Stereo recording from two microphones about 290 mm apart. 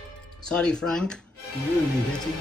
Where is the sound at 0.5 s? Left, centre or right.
Centre.